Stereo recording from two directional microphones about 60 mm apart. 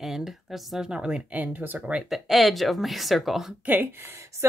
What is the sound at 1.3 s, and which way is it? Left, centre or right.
Speech, right.